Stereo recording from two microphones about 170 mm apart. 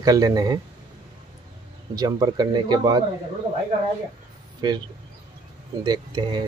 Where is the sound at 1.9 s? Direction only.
20° right (ahead or behind).